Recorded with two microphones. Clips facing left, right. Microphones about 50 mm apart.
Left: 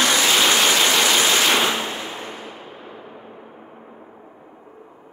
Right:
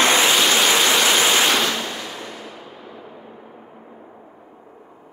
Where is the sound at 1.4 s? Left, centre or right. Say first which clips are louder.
Left 1 dB; centre.